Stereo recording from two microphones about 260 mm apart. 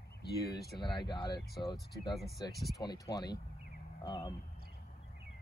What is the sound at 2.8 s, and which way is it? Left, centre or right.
Speech, centre.